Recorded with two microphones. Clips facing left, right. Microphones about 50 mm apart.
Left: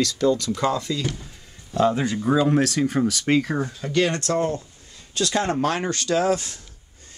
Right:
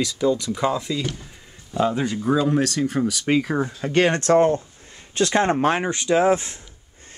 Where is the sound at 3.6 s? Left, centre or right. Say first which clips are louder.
Right 3 dB; right.